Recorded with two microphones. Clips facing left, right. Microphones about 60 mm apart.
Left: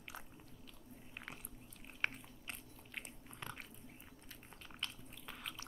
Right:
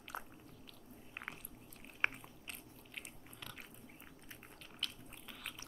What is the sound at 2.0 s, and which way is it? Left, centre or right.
Biting, right.